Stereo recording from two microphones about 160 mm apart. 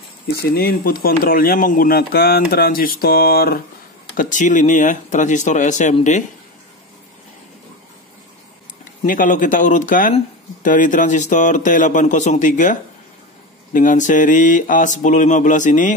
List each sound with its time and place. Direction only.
0.4 s speech: 75° left (ahead or behind)
4.2 s speech: 50° left (ahead or behind)
9.0 s speech: 55° left (ahead or behind)
13.7 s speech: 55° left (ahead or behind)